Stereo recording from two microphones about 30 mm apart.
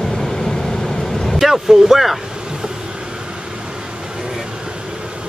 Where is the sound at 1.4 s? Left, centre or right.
Centre.